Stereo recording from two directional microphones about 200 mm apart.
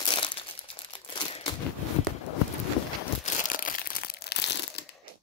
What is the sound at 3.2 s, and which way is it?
Crumpling, 40° left (ahead or behind).